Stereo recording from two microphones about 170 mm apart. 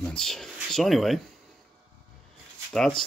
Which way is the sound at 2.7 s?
5° left (ahead or behind).